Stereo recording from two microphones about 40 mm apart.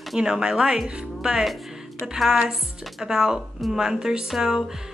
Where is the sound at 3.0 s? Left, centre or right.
Centre.